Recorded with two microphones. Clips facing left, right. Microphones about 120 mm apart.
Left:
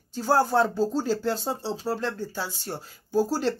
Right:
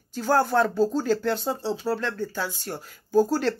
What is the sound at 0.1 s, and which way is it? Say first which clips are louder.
Speech: even; 30° left (ahead or behind).